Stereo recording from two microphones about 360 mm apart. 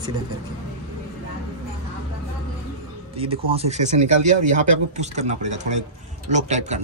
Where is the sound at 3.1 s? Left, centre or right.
Centre.